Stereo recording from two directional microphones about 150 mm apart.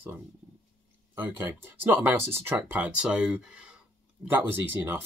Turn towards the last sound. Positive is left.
turn(degrees=-15)  # may be behind; listen again after turning